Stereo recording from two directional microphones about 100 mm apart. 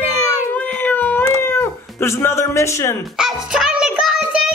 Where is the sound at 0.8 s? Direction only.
20° left (ahead or behind).